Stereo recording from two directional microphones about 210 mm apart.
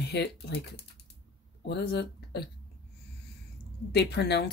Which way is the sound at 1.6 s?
50° left (ahead or behind).